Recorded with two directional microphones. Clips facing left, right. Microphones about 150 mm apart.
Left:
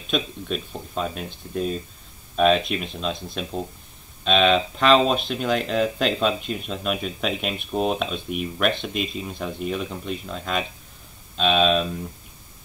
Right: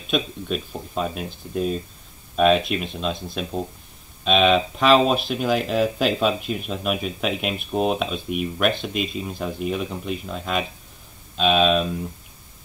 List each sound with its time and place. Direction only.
0.1 s speech: centre (ahead or behind)